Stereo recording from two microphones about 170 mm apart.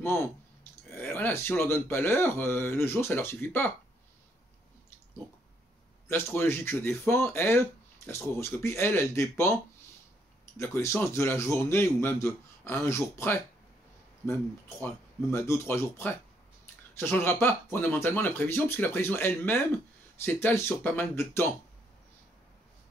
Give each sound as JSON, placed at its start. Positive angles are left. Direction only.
{"t": 0.0, "sound": "speech", "side_deg": 15}
{"t": 6.0, "sound": "speech", "side_deg": 15}
{"t": 10.6, "sound": "speech", "side_deg": 15}
{"t": 15.3, "sound": "speech", "side_deg": 15}